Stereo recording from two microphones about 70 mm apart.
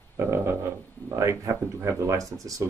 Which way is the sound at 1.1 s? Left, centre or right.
Right.